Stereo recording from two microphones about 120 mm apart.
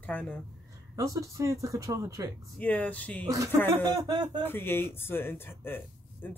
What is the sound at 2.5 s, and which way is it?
Speech, 15° left (ahead or behind).